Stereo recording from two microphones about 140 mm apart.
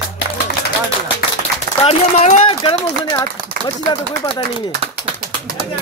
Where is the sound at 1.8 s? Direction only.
45° left (ahead or behind).